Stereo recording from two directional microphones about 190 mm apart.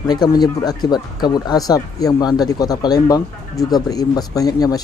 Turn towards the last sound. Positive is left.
turn(degrees=20)  # may be behind; listen again after turning